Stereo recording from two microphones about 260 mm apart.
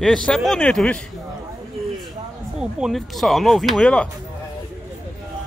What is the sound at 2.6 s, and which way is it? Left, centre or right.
Speech, centre.